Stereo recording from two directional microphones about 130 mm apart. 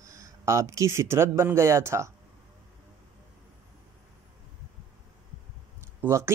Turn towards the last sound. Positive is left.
turn(degrees=-20)  # may be behind; listen again after turning